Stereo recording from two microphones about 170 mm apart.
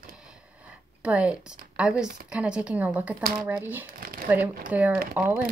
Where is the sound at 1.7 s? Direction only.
5° right (ahead or behind).